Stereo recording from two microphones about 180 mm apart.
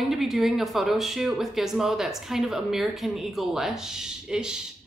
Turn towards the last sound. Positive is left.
turn(degrees=-5)  # may be behind; listen again after turning